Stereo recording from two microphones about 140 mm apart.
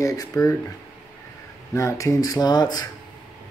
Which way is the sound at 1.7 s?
20° left (ahead or behind).